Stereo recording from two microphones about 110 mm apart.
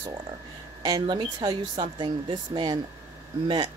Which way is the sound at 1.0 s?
45° right (ahead or behind).